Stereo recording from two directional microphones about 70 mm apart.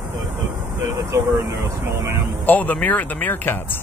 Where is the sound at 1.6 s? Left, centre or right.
Right.